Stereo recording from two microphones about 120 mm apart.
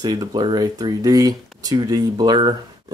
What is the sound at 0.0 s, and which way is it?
Speech, 30° right (ahead or behind).